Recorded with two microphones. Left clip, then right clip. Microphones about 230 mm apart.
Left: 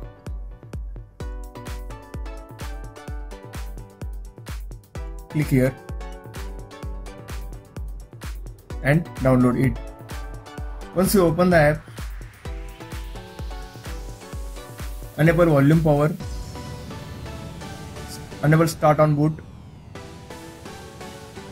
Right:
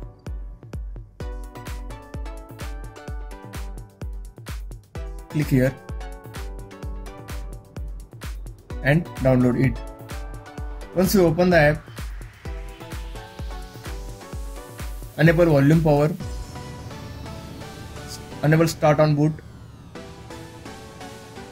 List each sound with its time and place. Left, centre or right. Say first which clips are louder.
0.2 s music: left 1 dB; centre
15.1 s speech: even; centre
15.9 s music: right 1 dB; centre
18.4 s speech: even; centre